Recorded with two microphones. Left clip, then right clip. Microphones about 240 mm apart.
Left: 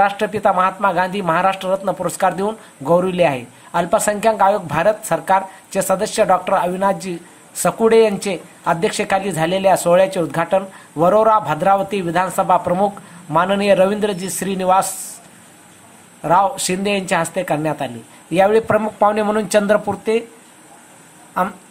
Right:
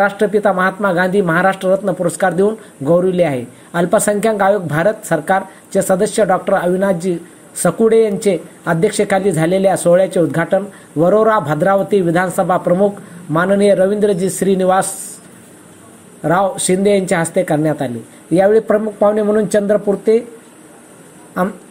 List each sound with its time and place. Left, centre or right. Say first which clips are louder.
0.0 s a man's voice: right 2 dB; centre
16.2 s a man's voice: even; centre